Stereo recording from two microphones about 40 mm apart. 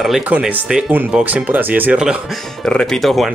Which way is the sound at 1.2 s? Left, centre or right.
Right.